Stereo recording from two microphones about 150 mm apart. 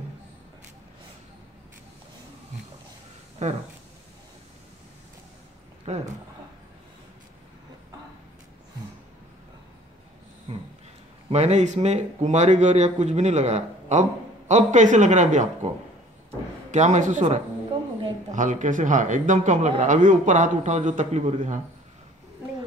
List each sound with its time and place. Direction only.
3.4 s speech: 50° right (ahead or behind)
5.9 s speech: 45° right (ahead or behind)
10.5 s dog: 40° right (ahead or behind)
11.2 s speech: 45° right (ahead or behind)
16.7 s speech: 50° right (ahead or behind)